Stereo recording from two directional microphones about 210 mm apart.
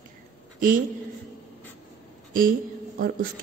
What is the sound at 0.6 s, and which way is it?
Speech, 40° right (ahead or behind).